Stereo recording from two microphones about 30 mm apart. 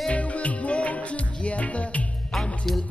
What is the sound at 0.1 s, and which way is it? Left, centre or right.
Music, left.